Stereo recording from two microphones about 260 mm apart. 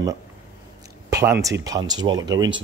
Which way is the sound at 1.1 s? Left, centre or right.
Centre.